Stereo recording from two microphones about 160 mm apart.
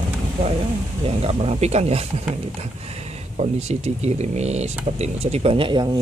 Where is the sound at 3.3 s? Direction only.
45° right (ahead or behind).